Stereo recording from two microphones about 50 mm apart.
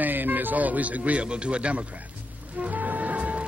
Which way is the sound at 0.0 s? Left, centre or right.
Right.